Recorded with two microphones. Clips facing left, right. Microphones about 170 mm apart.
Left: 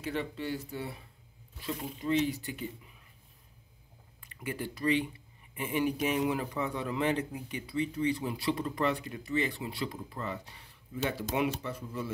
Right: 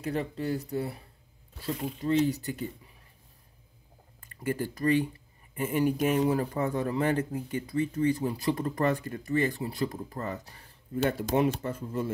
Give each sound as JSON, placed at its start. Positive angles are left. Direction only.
{"t": 0.0, "sound": "speech", "side_deg": -40}
{"t": 4.3, "sound": "a man's voice", "side_deg": -45}